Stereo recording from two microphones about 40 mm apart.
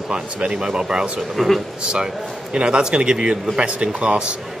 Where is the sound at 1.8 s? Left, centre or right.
Right.